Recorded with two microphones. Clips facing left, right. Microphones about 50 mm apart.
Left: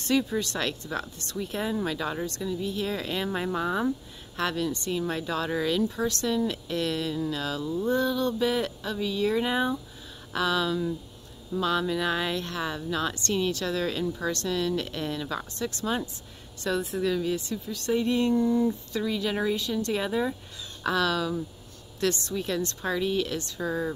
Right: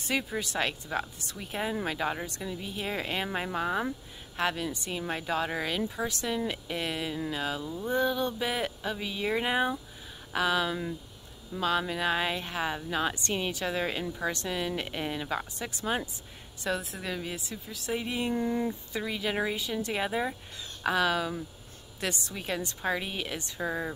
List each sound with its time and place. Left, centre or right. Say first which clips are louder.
0.0 s a woman's voice: left 5 dB; centre
18.3 s a woman's voice: left 6 dB; right